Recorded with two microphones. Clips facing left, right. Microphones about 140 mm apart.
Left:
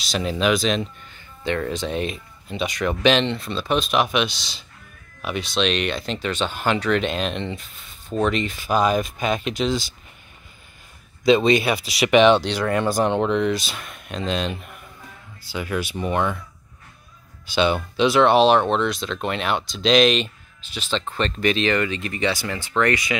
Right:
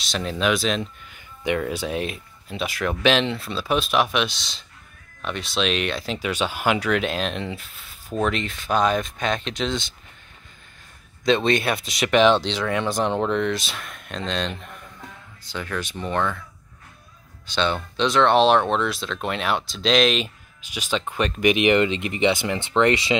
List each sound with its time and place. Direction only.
0.0 s speech: centre (ahead or behind)
1.4 s speech: 10° right (ahead or behind)
11.2 s speech: 5° left (ahead or behind)
17.5 s speech: 10° left (ahead or behind)
20.7 s speech: 10° right (ahead or behind)